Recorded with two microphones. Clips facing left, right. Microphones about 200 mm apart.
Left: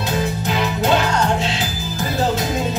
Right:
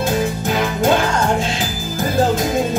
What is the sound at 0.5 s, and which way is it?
Music, 50° right (ahead or behind).